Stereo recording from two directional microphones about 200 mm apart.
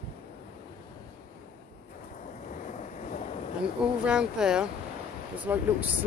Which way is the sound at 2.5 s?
35° left (ahead or behind).